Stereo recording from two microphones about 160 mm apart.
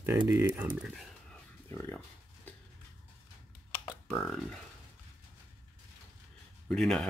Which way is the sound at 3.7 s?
5° left (ahead or behind).